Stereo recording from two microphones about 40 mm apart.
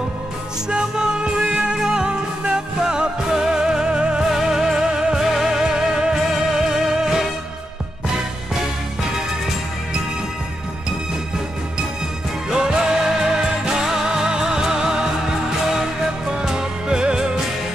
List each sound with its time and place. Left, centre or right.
0.7 s music: right
4.3 s music: centre
5.2 s music: centre
12.4 s music: centre